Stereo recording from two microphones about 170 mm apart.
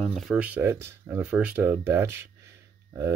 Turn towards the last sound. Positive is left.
turn(degrees=-15)  # may be behind; listen again after turning